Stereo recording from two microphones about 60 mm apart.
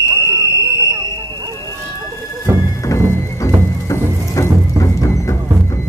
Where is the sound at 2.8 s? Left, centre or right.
Left.